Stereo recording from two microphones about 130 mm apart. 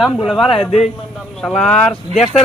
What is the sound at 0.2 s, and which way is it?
Speech, centre (ahead or behind).